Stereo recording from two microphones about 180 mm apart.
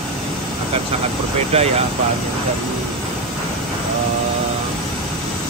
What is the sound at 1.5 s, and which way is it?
Speech, 35° right (ahead or behind).